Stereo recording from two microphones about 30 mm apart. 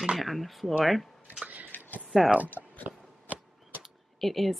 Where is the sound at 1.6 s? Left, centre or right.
Left.